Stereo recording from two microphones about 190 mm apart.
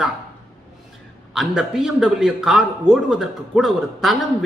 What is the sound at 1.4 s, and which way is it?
A man's voice, centre (ahead or behind).